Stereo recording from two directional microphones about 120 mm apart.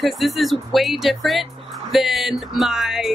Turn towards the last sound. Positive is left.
turn(degrees=-5)  # may be behind; listen again after turning